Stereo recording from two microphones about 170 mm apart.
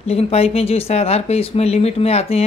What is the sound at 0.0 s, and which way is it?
Speech, 35° left (ahead or behind).